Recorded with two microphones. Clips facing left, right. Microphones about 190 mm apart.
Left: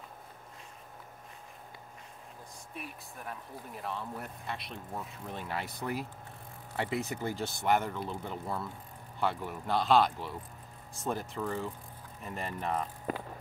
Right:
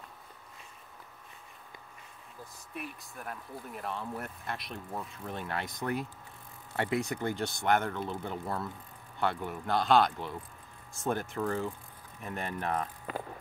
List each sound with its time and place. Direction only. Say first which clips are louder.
2.7 s speech: right 3 dB; centre (ahead or behind)
13.1 s vehicle: left 4 dB; 40° left (ahead or behind)